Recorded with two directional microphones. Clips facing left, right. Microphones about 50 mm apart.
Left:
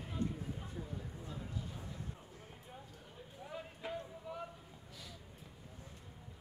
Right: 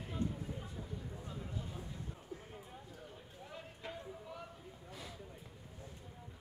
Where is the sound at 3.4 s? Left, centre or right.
Centre.